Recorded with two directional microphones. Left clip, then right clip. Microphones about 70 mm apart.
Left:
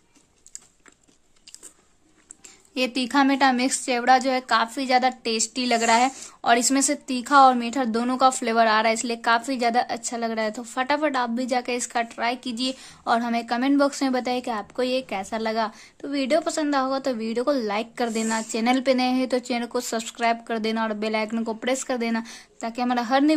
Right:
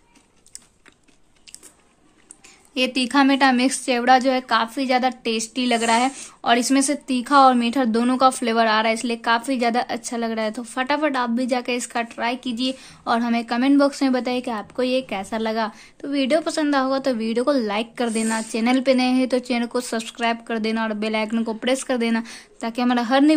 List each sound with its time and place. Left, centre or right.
2.7 s a woman's voice: left